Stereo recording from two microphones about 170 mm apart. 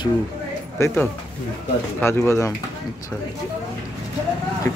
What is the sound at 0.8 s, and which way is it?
Speech, 15° left (ahead or behind).